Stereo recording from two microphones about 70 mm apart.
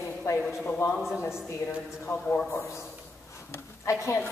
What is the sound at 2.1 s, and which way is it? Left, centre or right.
Speech, left.